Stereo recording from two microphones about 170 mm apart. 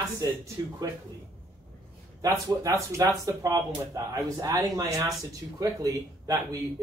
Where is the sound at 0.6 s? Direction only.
20° right (ahead or behind).